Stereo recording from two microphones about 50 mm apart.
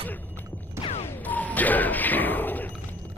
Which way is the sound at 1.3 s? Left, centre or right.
Left.